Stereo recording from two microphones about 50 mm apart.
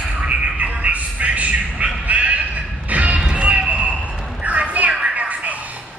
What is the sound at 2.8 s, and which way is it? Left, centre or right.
Music, right.